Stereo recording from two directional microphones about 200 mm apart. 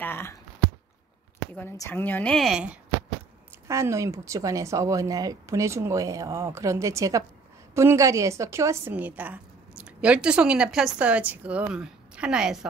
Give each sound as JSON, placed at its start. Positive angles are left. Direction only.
{"t": 0.0, "sound": "speech", "side_deg": 10}
{"t": 1.5, "sound": "a woman's voice", "side_deg": 10}